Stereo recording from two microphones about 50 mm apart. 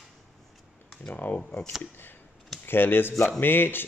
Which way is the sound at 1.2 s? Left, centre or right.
Left.